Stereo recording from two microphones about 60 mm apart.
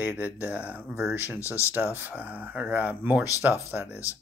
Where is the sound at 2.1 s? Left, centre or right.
Right.